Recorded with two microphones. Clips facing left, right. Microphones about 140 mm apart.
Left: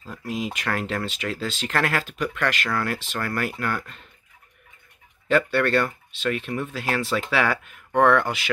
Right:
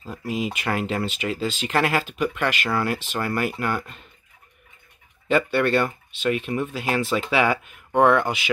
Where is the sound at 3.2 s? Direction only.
20° right (ahead or behind).